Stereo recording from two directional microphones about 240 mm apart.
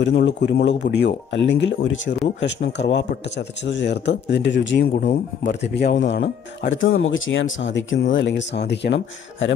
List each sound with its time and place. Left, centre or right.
0.0 s speech: left